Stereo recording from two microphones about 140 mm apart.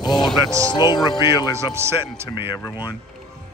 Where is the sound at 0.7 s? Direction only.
30° left (ahead or behind).